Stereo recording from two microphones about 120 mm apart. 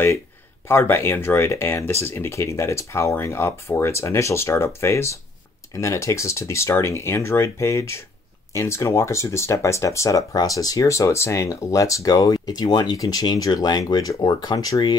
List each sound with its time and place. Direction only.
0.7 s speech: 20° left (ahead or behind); by 15.0 s 35° left (ahead or behind)